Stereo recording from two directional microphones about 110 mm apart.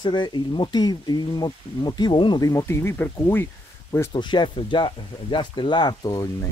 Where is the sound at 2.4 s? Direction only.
25° left (ahead or behind).